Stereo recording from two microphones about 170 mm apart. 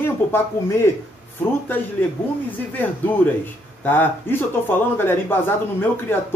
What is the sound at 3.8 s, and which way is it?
A man's voice, 10° left (ahead or behind).